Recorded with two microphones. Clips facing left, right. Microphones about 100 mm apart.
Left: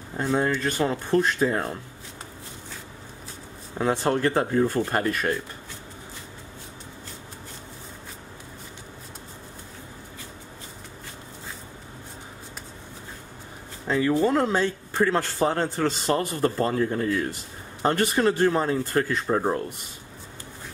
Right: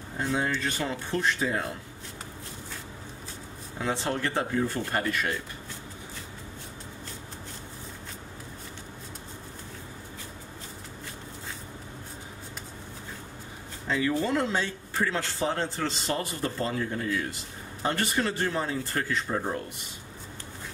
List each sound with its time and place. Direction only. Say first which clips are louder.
0.2 s speech: left 5 dB; 50° left (ahead or behind)
3.7 s speech: left 6 dB; 45° left (ahead or behind)
13.8 s speech: left 5 dB; 40° left (ahead or behind)